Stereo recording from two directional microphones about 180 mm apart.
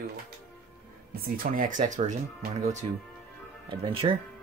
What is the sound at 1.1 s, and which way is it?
Speech, 55° right (ahead or behind).